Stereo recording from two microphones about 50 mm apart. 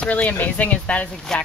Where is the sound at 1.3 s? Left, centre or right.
Centre.